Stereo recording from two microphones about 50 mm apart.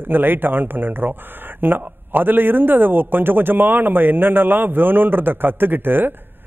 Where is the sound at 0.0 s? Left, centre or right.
Right.